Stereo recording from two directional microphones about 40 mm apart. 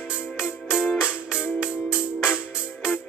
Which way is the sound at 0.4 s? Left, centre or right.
Centre.